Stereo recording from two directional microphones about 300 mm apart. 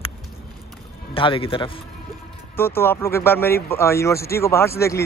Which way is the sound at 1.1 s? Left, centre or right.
Centre.